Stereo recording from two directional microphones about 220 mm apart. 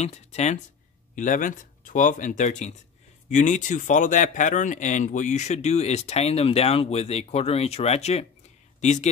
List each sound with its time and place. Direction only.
0.0 s speech: 30° left (ahead or behind)